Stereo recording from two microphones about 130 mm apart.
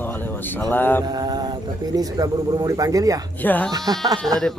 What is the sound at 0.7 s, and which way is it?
Speech, 15° left (ahead or behind).